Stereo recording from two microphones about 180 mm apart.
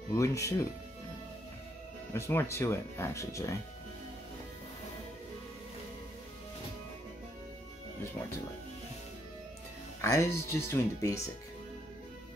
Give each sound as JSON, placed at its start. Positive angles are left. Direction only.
{"t": 0.1, "sound": "speech", "side_deg": 15}
{"t": 2.1, "sound": "speech", "side_deg": 15}
{"t": 10.0, "sound": "speech", "side_deg": 15}